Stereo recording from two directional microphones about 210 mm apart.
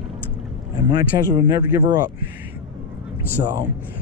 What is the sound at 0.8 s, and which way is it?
Speech, 20° right (ahead or behind).